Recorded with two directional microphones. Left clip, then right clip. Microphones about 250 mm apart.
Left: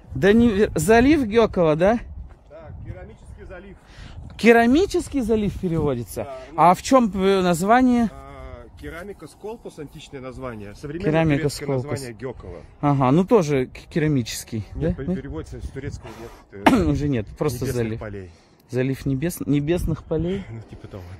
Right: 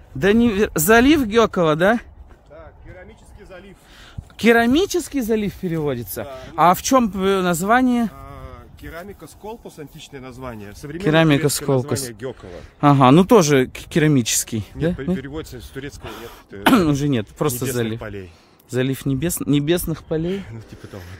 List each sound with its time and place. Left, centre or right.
0.2 s speech: centre
4.4 s speech: centre
8.2 s speech: right
11.1 s speech: right
16.0 s speech: right
17.9 s speech: right
18.7 s speech: centre
20.2 s speech: right